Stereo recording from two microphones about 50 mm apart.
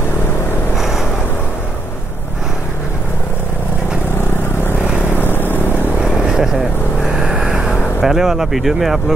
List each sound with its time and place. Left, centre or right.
0.7 s vehicle: centre
5.1 s vehicle: left
6.1 s vehicle: centre